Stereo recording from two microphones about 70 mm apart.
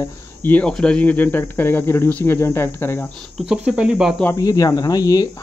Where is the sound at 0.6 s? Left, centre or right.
Centre; by 2.9 s left.